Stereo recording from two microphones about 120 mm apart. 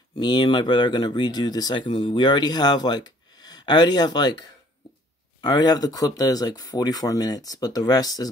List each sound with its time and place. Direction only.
0.2 s speech: 40° left (ahead or behind)